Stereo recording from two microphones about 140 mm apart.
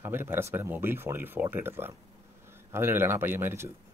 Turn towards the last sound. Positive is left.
turn(degrees=-15)  # may be behind; listen again after turning